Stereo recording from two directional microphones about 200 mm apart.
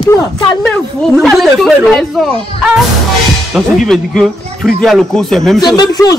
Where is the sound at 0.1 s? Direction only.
15° left (ahead or behind).